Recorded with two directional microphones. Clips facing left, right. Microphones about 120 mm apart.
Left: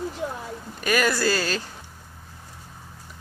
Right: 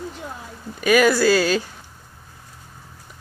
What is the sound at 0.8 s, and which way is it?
Speech, 5° right (ahead or behind).